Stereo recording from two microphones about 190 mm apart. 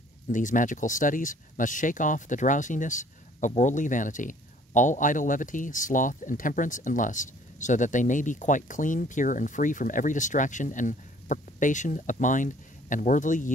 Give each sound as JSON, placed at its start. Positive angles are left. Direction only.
{"t": 0.3, "sound": "speech", "side_deg": 45}